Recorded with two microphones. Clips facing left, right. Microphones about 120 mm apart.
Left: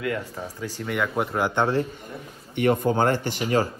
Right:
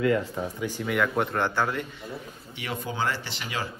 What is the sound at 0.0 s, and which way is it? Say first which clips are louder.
Speech: right 4 dB; 30° right (ahead or behind).